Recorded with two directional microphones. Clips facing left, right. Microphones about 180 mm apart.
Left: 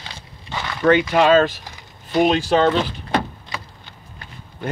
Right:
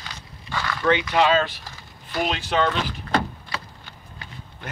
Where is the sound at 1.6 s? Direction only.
20° left (ahead or behind).